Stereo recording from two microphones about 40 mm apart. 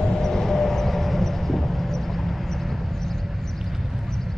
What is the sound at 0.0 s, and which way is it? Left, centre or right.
Vehicle, centre.